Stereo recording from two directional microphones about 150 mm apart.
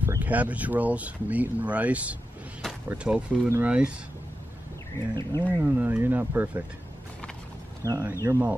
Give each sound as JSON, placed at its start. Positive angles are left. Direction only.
{"t": 0.0, "sound": "speech", "side_deg": -10}
{"t": 5.4, "sound": "speech", "side_deg": -10}
{"t": 7.8, "sound": "speech", "side_deg": -15}